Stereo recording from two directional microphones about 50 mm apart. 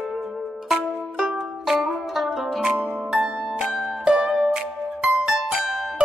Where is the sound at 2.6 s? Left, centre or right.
Centre.